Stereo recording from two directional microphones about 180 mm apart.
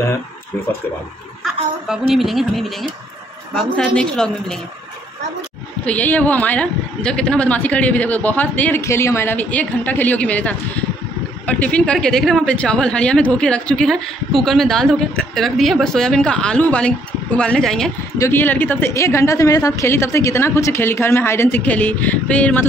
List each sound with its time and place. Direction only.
1.4 s a woman's voice: centre (ahead or behind)
5.9 s a woman's voice: 10° left (ahead or behind)
18.1 s a woman's voice: 15° left (ahead or behind)